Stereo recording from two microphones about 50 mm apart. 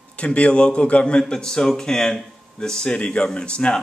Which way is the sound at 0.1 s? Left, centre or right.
Left.